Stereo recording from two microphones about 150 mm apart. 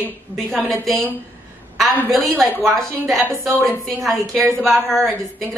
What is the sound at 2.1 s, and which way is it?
Speech, centre (ahead or behind).